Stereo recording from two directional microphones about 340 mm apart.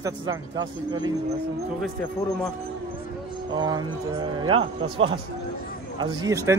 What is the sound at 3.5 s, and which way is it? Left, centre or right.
Speech, centre.